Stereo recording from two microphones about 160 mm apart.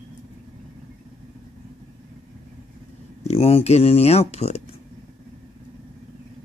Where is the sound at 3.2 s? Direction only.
40° left (ahead or behind).